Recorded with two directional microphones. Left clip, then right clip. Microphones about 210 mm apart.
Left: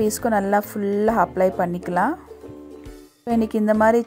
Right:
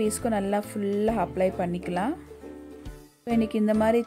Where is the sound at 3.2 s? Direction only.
15° left (ahead or behind).